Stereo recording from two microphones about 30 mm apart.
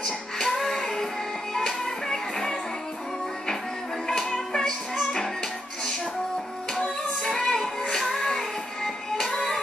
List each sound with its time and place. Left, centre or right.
0.0 s music: left
4.1 s music: left
7.2 s music: centre